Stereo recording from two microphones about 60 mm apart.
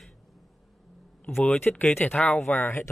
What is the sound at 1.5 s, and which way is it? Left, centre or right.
Speech, left.